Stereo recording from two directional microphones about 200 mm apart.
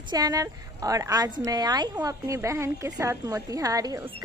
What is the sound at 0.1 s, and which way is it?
Speech, 20° right (ahead or behind).